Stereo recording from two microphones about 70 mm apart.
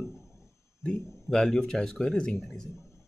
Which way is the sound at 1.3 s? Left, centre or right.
Centre.